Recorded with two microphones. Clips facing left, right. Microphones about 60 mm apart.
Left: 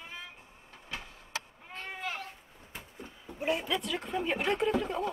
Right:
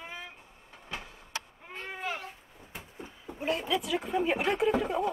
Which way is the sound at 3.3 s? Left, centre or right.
Centre.